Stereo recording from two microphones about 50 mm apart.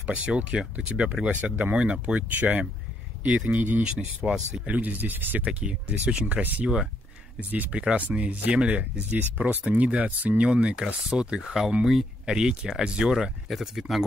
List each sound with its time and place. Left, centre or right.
0.1 s speech: right
2.2 s speech: right
4.2 s speech: centre
4.6 s speech: right
5.4 s speech: right
11.8 s speech: centre